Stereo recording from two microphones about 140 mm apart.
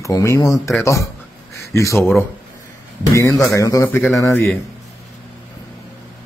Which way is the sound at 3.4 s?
20° left (ahead or behind).